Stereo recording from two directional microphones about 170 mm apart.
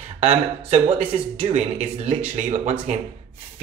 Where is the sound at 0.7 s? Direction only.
30° right (ahead or behind).